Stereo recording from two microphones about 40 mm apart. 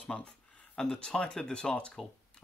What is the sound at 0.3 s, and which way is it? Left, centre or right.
Speech, centre.